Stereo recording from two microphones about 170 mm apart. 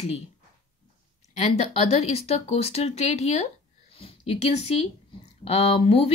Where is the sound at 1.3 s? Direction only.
40° left (ahead or behind).